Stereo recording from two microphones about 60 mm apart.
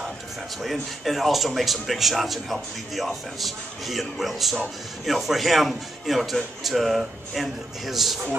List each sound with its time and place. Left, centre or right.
0.6 s speech: centre